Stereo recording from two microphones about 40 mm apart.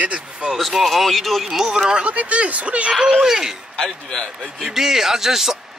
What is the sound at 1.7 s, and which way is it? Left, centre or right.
Speech, centre.